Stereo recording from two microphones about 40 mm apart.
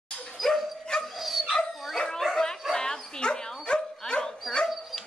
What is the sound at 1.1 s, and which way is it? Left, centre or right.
Dog, centre.